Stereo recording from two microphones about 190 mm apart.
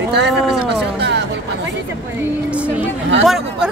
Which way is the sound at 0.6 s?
60° right (ahead or behind).